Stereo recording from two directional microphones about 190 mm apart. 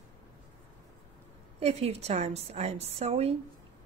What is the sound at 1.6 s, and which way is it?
A woman's voice, 35° right (ahead or behind).